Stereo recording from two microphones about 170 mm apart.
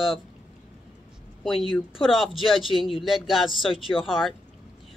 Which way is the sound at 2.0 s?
Centre (ahead or behind).